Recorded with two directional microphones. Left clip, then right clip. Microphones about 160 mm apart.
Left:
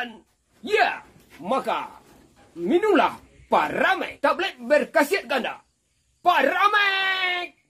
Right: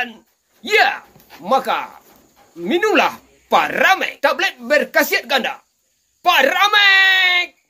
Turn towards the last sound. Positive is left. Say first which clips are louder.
# right 11 dB
turn(degrees=-5)  # may be behind; listen again after turning